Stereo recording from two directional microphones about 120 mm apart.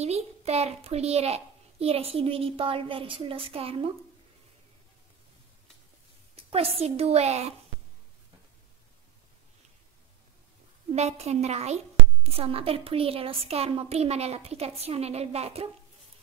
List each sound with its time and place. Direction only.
0.0 s a child's voice: 60° right (ahead or behind)
6.3 s a child's voice: 55° right (ahead or behind)
10.9 s a child's voice: 60° right (ahead or behind)